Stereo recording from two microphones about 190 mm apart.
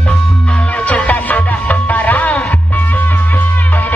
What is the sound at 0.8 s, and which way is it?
Music, 5° left (ahead or behind).